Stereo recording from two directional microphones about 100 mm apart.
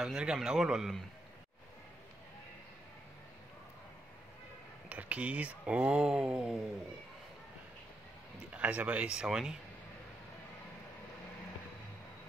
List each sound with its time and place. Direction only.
0.0 s a man's voice: 5° right (ahead or behind)
4.8 s speech: 15° right (ahead or behind)
8.5 s speech: 15° right (ahead or behind)